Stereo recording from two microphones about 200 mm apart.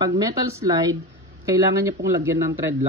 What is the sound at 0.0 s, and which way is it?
Speech, 15° right (ahead or behind).